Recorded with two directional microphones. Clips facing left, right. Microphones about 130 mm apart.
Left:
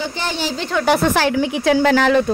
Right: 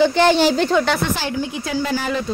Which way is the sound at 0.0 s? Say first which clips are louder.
Right 10 dB; 80° right.